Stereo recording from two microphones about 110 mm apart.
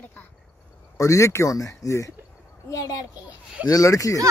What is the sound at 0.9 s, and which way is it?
Speech, 30° left (ahead or behind).